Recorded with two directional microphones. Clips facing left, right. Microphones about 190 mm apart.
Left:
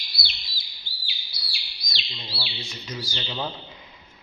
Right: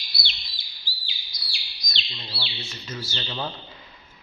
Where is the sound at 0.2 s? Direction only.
5° left (ahead or behind).